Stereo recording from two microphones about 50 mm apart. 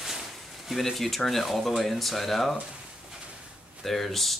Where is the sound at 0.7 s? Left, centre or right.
Centre.